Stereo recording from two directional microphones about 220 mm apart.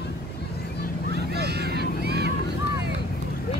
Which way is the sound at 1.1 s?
45° right (ahead or behind).